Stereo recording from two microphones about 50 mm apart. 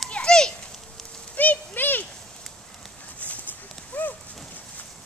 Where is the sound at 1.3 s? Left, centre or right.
Left.